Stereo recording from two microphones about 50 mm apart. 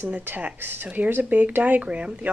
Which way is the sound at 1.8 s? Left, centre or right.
Right.